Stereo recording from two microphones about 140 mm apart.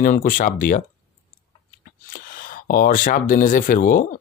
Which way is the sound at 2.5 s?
80° left.